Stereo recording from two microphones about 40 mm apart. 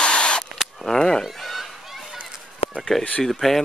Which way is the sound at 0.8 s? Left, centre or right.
Centre.